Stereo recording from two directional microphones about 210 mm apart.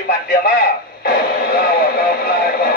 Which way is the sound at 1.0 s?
50° left (ahead or behind).